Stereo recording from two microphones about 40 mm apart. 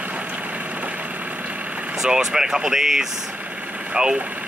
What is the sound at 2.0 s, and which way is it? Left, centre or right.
Speech, centre.